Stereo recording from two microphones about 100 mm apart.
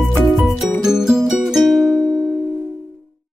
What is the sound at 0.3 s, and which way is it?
Music, centre (ahead or behind).